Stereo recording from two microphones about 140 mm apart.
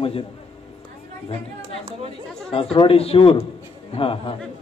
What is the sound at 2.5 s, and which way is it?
A man's voice, 40° left (ahead or behind).